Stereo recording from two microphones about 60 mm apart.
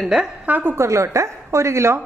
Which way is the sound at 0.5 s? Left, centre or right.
Right.